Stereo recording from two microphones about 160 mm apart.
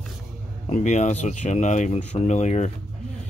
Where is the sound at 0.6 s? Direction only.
45° left (ahead or behind).